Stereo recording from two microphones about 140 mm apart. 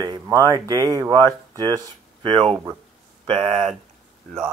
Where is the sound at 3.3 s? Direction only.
50° right (ahead or behind).